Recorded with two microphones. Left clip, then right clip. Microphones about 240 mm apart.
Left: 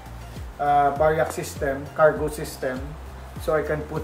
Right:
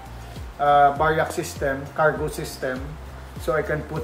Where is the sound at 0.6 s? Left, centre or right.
Centre.